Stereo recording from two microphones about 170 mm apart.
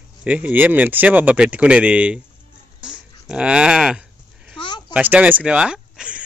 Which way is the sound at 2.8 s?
5° right (ahead or behind).